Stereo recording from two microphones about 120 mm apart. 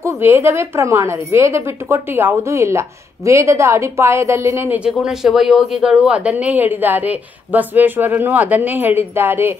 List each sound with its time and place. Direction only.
0.0 s a woman's voice: 20° right (ahead or behind)
4.7 s speech: 5° right (ahead or behind)